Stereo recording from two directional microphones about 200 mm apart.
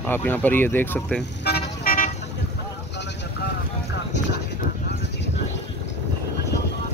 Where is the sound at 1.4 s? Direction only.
50° left (ahead or behind).